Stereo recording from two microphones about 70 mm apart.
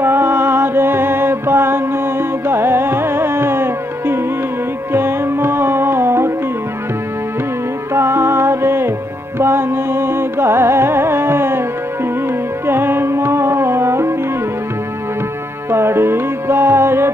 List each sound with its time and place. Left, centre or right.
0.0 s music: right
7.9 s music: right
12.6 s music: right
15.7 s music: right